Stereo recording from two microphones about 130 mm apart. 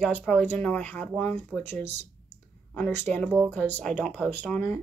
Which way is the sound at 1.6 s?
60° right (ahead or behind).